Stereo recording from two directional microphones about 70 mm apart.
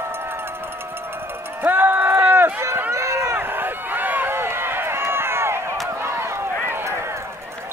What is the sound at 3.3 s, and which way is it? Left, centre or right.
Run, right.